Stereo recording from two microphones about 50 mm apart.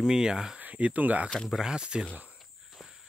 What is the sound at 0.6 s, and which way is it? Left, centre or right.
Speech, right.